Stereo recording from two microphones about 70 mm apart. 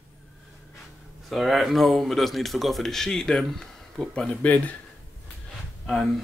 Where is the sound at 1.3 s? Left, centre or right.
Centre.